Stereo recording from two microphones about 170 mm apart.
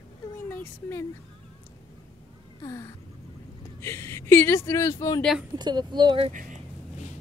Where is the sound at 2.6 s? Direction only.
20° left (ahead or behind).